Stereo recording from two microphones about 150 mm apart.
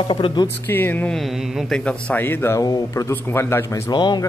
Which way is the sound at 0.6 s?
15° left (ahead or behind).